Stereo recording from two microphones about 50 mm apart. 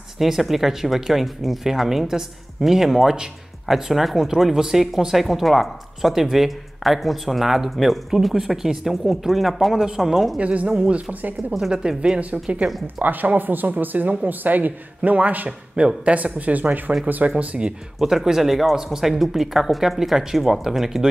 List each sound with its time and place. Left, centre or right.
0.2 s speech: centre
10.4 s speech: right
12.8 s speech: right
15.7 s speech: centre; by 16.9 s right
17.4 s speech: right
18.0 s speech: centre